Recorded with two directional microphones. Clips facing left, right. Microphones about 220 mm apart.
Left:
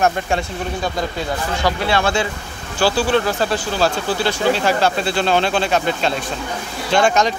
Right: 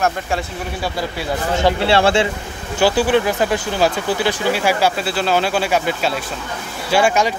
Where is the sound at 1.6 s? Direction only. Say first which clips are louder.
Right 5 dB; 25° right (ahead or behind).